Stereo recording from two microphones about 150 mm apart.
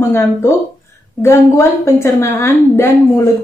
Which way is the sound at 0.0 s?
15° left (ahead or behind).